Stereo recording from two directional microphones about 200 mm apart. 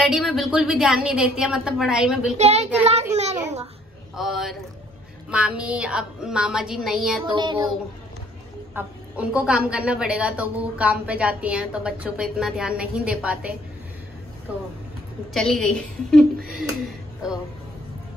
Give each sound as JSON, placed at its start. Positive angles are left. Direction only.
{"t": 0.0, "sound": "a woman's voice", "side_deg": 0}
{"t": 2.3, "sound": "a child's voice", "side_deg": -30}
{"t": 4.1, "sound": "a woman's voice", "side_deg": 0}
{"t": 7.2, "sound": "child singing", "side_deg": -25}
{"t": 8.7, "sound": "a woman's voice", "side_deg": -5}
{"t": 15.3, "sound": "a woman's voice", "side_deg": 0}